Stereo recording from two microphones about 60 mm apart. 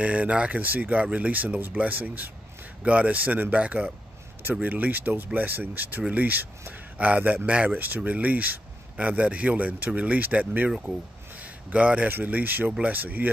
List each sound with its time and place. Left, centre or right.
0.0 s speech: right
11.3 s a sound: right
12.1 s speech: right